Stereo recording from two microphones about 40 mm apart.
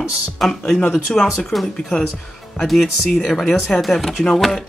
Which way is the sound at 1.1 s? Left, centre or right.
Left.